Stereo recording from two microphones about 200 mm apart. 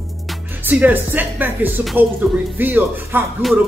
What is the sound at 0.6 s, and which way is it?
Speech, 10° right (ahead or behind).